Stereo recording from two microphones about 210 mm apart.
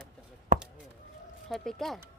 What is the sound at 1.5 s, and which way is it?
Speech, centre (ahead or behind).